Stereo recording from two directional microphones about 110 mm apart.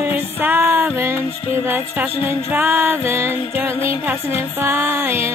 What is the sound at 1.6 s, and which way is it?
Music, 20° right (ahead or behind).